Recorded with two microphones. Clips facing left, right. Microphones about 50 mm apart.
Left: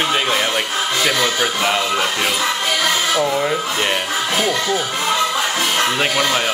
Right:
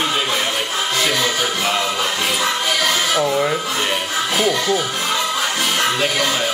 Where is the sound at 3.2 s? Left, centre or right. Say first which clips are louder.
Even; centre.